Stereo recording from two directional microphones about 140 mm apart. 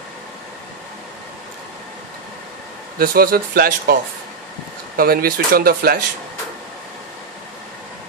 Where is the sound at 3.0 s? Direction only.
90° right.